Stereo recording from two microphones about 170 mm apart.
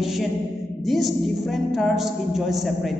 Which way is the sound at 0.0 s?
Centre (ahead or behind).